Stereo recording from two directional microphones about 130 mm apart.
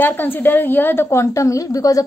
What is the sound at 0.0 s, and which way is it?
A woman's voice, 15° left (ahead or behind).